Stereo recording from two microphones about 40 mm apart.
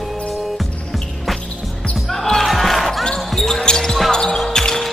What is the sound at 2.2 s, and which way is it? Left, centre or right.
Basketball bounce, centre.